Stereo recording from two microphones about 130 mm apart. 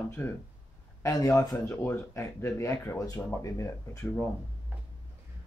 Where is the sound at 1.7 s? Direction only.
15° left (ahead or behind).